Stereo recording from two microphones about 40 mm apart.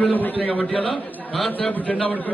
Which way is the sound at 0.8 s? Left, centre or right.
Centre.